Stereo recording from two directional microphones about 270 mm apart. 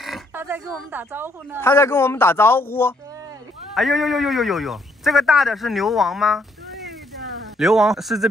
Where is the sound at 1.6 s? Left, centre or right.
Centre.